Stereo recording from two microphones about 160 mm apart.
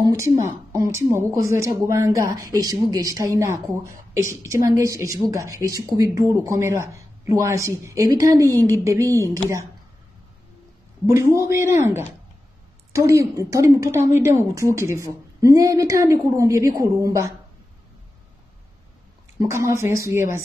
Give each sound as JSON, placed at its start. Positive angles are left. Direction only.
{"t": 0.0, "sound": "a woman's voice", "side_deg": -20}
{"t": 11.1, "sound": "a woman's voice", "side_deg": -15}
{"t": 19.4, "sound": "speech", "side_deg": -20}